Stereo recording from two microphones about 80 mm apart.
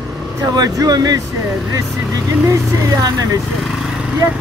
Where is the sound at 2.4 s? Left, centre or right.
Right.